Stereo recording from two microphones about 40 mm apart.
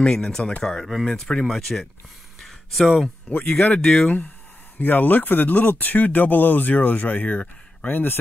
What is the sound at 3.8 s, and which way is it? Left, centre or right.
Speech, left.